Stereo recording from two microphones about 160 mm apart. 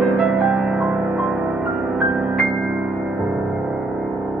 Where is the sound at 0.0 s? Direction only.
Centre (ahead or behind).